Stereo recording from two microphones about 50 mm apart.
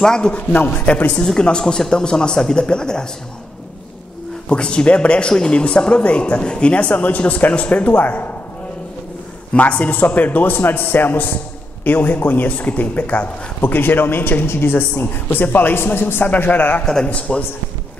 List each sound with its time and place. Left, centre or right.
0.0 s a man's voice: centre
0.3 s speech: left
1.2 s a man's voice: centre
4.5 s speech: centre; by 8.3 s left
9.5 s a man's voice: left
16.4 s a man's voice: left
17.0 s speech: left